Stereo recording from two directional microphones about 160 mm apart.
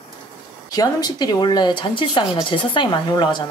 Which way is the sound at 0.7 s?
25° left (ahead or behind).